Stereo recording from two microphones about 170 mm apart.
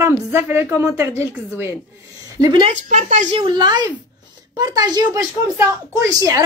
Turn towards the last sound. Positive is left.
turn(degrees=-20)  # may be behind; listen again after turning